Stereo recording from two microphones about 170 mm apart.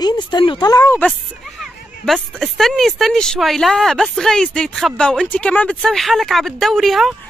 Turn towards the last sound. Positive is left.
turn(degrees=0)  # may be behind; listen again after turning